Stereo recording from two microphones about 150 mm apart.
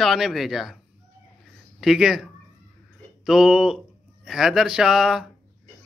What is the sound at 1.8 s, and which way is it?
A man's voice, centre (ahead or behind).